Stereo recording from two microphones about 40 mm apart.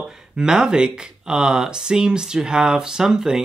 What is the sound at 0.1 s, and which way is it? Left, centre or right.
Speech, centre.